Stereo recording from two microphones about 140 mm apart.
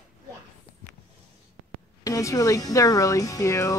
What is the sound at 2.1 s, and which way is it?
Speech, 25° left (ahead or behind).